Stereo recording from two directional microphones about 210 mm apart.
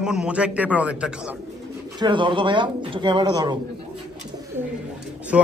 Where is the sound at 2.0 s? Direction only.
20° right (ahead or behind).